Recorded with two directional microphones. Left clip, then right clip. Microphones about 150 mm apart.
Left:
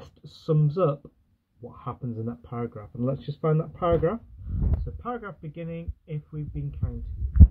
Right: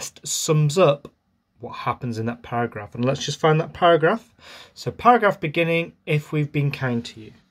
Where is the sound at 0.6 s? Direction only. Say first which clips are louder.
Right 10 dB; 20° right (ahead or behind).